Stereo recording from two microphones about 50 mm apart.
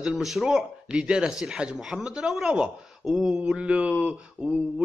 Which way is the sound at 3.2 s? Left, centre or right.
Centre.